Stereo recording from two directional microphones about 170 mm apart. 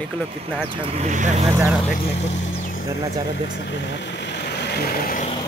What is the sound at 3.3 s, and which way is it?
Speech, 90° left.